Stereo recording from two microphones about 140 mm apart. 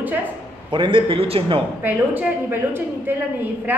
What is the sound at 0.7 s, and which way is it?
Speech, 35° right (ahead or behind).